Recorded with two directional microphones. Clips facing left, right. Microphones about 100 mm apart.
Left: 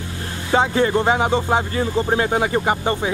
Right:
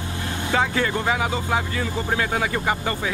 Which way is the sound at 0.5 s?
25° left (ahead or behind).